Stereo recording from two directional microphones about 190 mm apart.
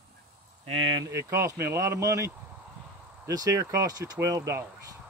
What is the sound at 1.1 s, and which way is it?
Speech, 15° right (ahead or behind).